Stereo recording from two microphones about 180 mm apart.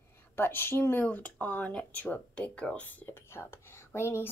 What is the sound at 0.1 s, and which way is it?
Speech, 10° left (ahead or behind).